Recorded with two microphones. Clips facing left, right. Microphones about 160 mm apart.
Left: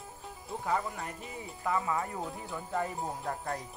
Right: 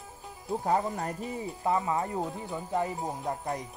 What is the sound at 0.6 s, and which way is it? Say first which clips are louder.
Speech: right 4 dB; 40° right (ahead or behind).